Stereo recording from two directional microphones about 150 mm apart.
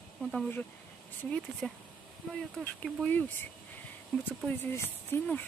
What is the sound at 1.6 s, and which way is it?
Speech, 5° left (ahead or behind).